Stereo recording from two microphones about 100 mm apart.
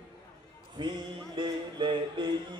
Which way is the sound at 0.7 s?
50° right (ahead or behind).